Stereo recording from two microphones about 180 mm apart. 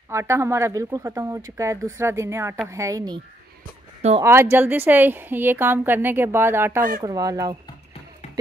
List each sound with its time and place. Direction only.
0.1 s a woman's voice: 15° right (ahead or behind)
4.2 s a woman's voice: 15° right (ahead or behind)